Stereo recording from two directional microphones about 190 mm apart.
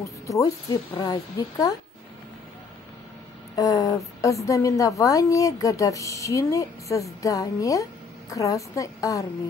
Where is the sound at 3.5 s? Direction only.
15° left (ahead or behind).